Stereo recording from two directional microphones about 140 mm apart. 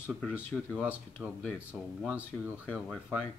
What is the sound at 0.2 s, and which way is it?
Speech, 5° left (ahead or behind).